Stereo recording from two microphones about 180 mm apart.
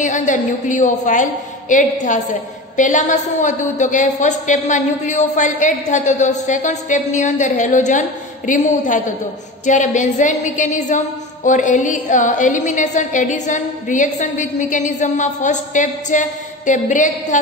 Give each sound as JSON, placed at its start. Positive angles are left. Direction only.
{"t": 0.0, "sound": "a woman's voice", "side_deg": 40}